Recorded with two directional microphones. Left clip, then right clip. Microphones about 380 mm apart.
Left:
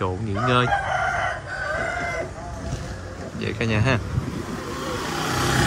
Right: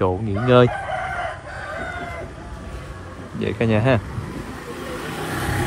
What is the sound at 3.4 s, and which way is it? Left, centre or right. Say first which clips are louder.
Speech: right 4 dB; centre.